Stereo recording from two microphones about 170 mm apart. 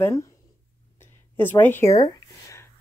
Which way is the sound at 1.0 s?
15° left (ahead or behind).